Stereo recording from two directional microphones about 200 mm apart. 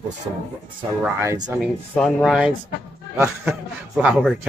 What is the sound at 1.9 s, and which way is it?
A man's voice, centre (ahead or behind).